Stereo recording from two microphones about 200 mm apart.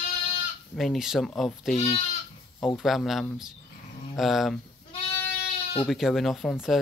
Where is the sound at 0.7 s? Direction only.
Centre (ahead or behind).